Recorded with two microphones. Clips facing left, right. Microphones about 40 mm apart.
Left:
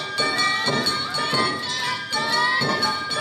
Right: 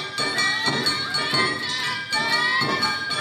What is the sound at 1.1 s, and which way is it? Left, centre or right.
Music, centre.